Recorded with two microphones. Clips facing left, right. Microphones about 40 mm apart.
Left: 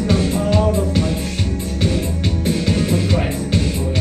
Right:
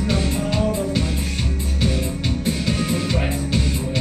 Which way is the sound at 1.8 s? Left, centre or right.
Centre.